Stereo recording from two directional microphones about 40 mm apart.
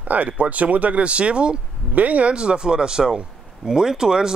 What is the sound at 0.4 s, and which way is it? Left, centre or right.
Speech, right.